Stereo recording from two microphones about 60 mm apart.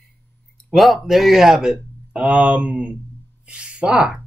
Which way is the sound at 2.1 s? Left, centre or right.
Right.